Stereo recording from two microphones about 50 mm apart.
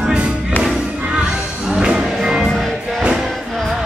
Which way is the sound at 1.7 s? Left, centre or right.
Centre.